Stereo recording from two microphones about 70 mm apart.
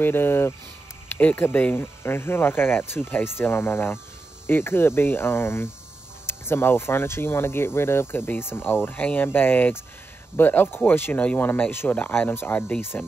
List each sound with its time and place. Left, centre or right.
0.0 s speech: left
12.9 s speech: centre